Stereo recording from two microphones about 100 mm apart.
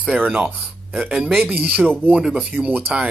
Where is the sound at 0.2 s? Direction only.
15° right (ahead or behind).